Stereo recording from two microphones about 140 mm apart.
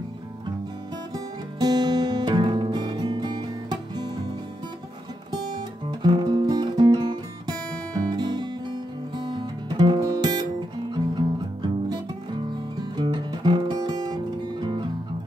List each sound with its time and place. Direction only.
1.1 s music: 30° right (ahead or behind)
5.3 s music: 30° right (ahead or behind)